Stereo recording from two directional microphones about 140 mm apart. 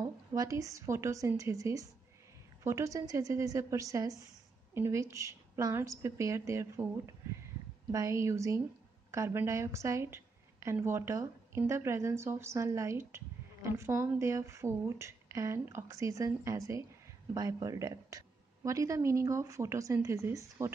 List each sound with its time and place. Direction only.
0.0 s a woman's voice: 25° right (ahead or behind)
7.9 s a woman's voice: 20° right (ahead or behind)